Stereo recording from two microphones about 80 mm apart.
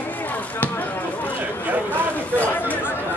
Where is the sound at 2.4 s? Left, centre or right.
Left.